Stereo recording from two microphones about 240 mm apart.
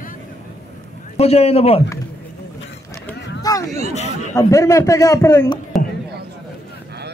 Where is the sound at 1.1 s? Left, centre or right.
Left.